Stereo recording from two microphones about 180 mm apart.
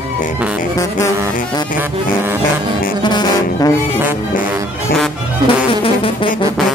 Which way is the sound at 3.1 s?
25° left (ahead or behind).